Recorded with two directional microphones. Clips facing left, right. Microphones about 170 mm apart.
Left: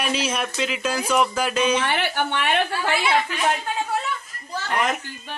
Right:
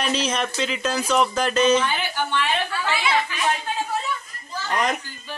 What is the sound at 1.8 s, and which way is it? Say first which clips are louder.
A woman's voice: left 2 dB; 70° left (ahead or behind).